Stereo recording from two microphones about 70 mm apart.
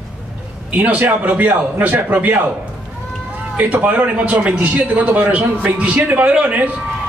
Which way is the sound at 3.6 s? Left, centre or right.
Right.